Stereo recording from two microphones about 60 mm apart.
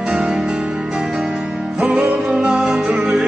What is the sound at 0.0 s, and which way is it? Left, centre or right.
Music, centre.